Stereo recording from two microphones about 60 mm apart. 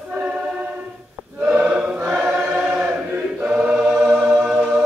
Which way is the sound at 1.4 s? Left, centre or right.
Right.